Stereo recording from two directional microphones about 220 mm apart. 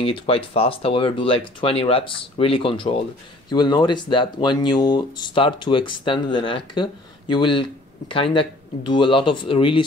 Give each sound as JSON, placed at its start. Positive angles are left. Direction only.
{"t": 0.0, "sound": "speech", "side_deg": 25}